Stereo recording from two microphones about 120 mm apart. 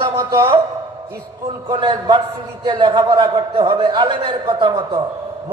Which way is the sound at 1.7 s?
40° right (ahead or behind).